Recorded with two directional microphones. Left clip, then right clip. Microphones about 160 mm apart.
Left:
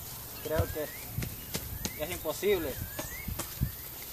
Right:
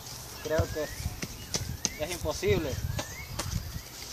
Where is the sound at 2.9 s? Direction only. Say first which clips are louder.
Right 2 dB; 45° right (ahead or behind).